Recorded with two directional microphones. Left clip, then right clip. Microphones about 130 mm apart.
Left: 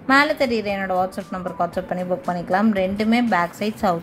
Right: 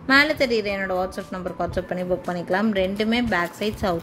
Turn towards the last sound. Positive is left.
turn(degrees=-15)  # may be behind; listen again after turning